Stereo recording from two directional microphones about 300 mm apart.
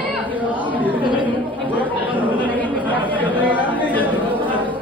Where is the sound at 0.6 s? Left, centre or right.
Centre.